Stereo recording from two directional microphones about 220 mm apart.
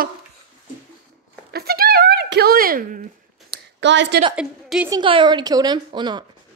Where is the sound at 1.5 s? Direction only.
45° right (ahead or behind).